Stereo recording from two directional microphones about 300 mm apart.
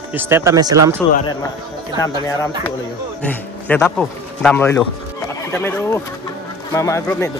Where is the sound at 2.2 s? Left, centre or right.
Centre.